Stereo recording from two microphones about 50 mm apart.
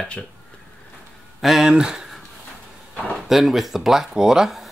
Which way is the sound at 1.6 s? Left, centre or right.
Centre.